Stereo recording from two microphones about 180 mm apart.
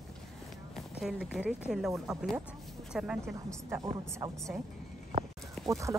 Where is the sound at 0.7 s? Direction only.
Centre (ahead or behind).